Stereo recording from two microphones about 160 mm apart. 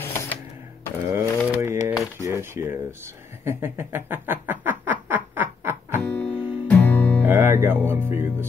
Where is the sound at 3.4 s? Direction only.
15° right (ahead or behind).